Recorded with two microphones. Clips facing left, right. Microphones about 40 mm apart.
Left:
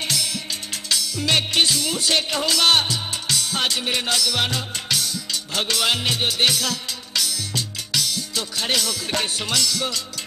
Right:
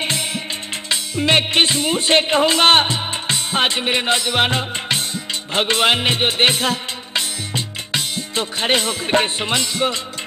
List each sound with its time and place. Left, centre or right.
0.0 s music: right